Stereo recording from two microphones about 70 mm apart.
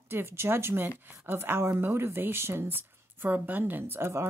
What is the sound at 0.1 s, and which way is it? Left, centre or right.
Speech, right.